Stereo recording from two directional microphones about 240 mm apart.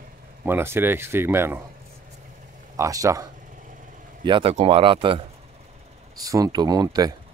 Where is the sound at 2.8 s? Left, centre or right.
Centre.